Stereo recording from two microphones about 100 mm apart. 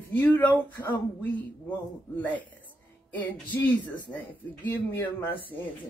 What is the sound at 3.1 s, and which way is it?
Speech, 15° left (ahead or behind).